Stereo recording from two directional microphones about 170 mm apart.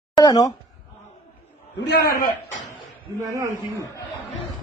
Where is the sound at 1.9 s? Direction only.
60° left (ahead or behind).